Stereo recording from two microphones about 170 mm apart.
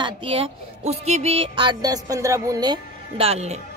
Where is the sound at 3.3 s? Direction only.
40° right (ahead or behind).